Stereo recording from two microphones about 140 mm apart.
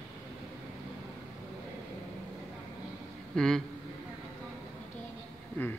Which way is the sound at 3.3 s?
5° left (ahead or behind).